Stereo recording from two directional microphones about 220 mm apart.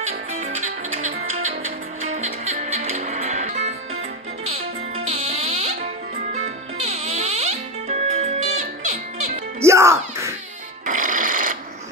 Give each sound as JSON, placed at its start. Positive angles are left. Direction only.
{"t": 0.3, "sound": "music", "side_deg": -30}
{"t": 9.6, "sound": "music", "side_deg": -15}
{"t": 10.9, "sound": "music", "side_deg": -35}